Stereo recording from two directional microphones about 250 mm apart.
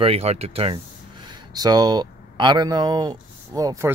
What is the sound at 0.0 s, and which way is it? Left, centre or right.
Speech, right.